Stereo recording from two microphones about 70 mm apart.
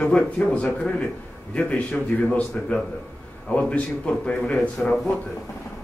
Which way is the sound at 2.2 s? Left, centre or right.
Centre.